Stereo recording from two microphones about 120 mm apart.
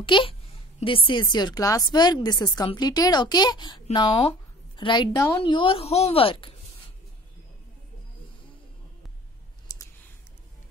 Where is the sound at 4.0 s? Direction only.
50° left (ahead or behind).